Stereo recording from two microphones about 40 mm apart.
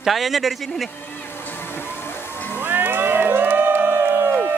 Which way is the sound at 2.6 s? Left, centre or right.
Right.